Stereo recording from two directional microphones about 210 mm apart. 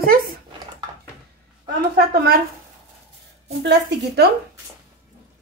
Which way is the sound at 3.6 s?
55° right (ahead or behind).